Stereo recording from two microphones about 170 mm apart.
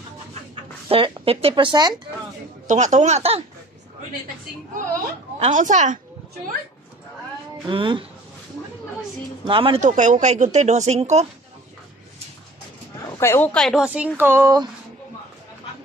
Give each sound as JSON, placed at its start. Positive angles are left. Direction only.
{"t": 0.8, "sound": "speech", "side_deg": -35}
{"t": 2.7, "sound": "speech", "side_deg": -45}
{"t": 5.4, "sound": "speech", "side_deg": -45}
{"t": 7.7, "sound": "speech", "side_deg": -30}
{"t": 9.5, "sound": "speech", "side_deg": -30}
{"t": 9.8, "sound": "speech", "side_deg": -45}
{"t": 13.2, "sound": "speech", "side_deg": 15}